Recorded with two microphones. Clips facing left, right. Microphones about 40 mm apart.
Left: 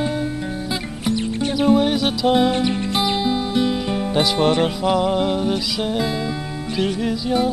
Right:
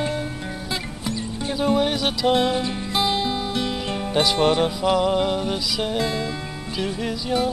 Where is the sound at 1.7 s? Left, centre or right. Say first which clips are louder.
Left 4 dB; centre.